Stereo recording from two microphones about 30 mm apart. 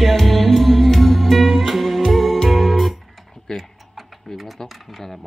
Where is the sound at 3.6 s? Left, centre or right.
Centre.